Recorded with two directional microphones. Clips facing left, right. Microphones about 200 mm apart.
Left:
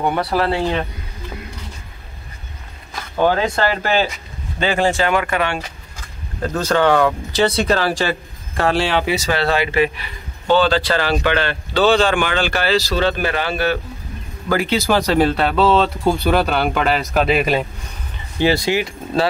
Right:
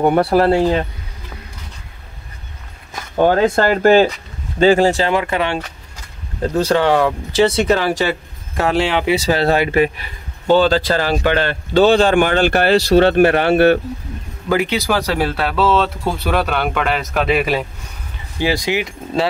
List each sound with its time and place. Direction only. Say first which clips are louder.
0.0 s speech: right 6 dB; 50° right (ahead or behind)
3.2 s speech: right 4 dB; 50° right (ahead or behind)
5.1 s speech: right 1 dB; 25° right (ahead or behind)
6.7 s speech: left 1 dB; 20° right (ahead or behind)
9.1 s speech: right 3 dB; 35° right (ahead or behind); by 13.7 s 60° right (ahead or behind)
14.5 s a man's voice: even; 15° right (ahead or behind); by 16.5 s centre (ahead or behind)
16.5 s speech: left 1 dB; 35° left (ahead or behind)
16.8 s a man's voice: left 1 dB; centre (ahead or behind)
18.4 s speech: left 2 dB; 15° right (ahead or behind)